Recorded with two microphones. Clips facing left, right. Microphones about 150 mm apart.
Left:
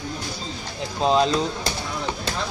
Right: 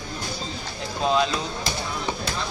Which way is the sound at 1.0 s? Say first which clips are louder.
Left 3 dB; 35° left (ahead or behind).